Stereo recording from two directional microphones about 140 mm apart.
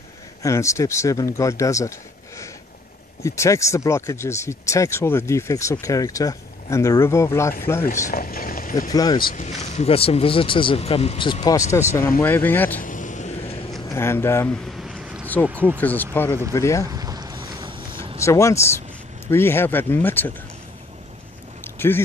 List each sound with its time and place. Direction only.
0.4 s speech: 20° left (ahead or behind)
8.1 s a sound: 85° left
8.9 s speech: 30° left (ahead or behind)
9.3 s speech: 55° left (ahead or behind)
11.4 s speech: 20° left (ahead or behind)
12.8 s vehicle: 65° left (ahead or behind); by 13.7 s 45° left (ahead or behind)
13.8 s speech: 15° left (ahead or behind)
14.7 s a sound: centre (ahead or behind)
15.8 s speech: 15° left (ahead or behind)
16.8 s a sound: 25° right (ahead or behind)
18.2 s speech: 20° left (ahead or behind)
21.7 s speech: 15° left (ahead or behind)